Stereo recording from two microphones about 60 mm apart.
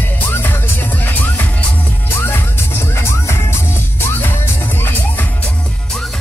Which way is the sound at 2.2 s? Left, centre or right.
Left.